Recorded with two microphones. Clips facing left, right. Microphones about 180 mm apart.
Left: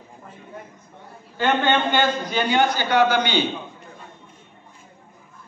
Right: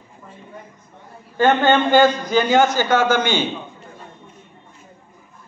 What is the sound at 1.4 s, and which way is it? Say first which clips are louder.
A man's voice: right 5 dB; 45° right (ahead or behind).